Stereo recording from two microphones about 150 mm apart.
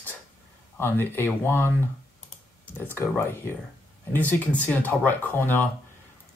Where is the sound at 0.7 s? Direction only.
15° left (ahead or behind).